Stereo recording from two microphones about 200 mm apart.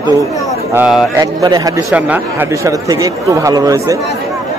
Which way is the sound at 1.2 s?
20° right (ahead or behind).